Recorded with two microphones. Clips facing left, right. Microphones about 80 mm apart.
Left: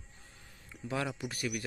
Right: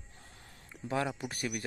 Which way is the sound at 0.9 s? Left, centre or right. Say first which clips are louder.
Right 2 dB; right.